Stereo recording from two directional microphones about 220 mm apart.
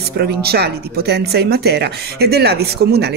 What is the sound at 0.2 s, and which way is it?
Speech, 45° right (ahead or behind).